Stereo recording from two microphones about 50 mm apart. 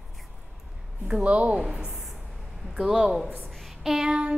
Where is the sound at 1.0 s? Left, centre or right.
Right.